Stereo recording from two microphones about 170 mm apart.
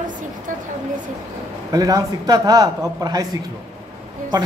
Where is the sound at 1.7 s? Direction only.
20° right (ahead or behind).